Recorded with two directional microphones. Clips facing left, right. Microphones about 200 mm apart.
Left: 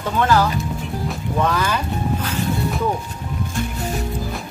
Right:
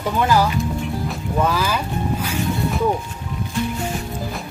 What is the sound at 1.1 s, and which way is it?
Music, 5° right (ahead or behind).